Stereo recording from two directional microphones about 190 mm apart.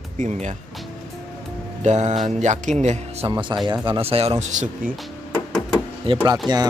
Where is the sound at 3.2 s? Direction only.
25° right (ahead or behind).